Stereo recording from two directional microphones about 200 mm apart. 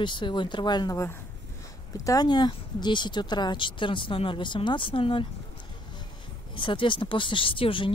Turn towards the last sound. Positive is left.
turn(degrees=25)  # may be behind; listen again after turning